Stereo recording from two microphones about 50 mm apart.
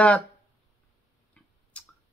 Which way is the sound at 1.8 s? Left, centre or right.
Left.